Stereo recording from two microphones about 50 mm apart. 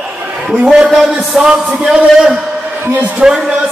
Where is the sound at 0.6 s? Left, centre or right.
Centre.